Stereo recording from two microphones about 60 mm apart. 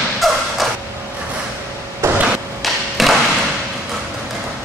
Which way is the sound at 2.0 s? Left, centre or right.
Right.